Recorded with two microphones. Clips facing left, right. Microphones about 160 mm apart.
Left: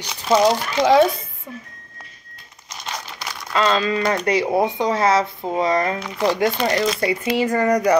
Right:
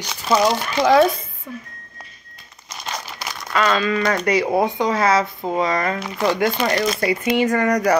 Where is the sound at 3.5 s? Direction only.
30° left (ahead or behind).